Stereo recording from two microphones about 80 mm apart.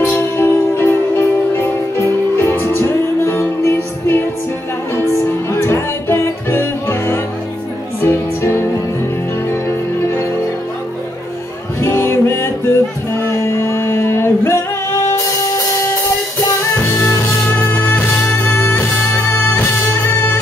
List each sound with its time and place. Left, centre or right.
0.0 s music: left
11.8 s music: left
13.2 s a sound: left
17.0 s music: left